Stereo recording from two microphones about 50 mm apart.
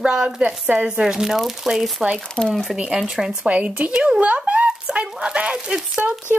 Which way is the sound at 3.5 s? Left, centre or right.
Right.